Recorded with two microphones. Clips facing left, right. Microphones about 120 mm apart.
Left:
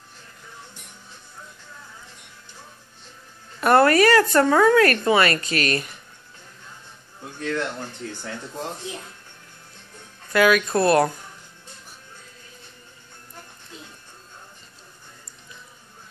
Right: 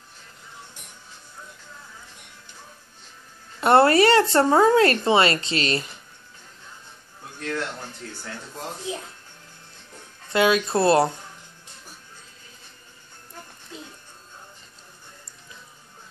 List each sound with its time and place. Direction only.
3.6 s speech: 30° right (ahead or behind)
10.3 s speech: 25° right (ahead or behind)